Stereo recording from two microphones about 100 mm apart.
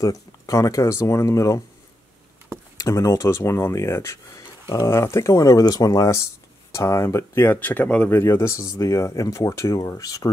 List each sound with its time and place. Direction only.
0.0 s speech: 35° left (ahead or behind)
2.8 s speech: 30° left (ahead or behind); by 8.1 s 15° left (ahead or behind)
8.1 s speech: 25° left (ahead or behind)